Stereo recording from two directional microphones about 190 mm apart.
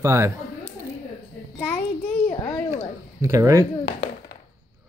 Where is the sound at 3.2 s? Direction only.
15° right (ahead or behind).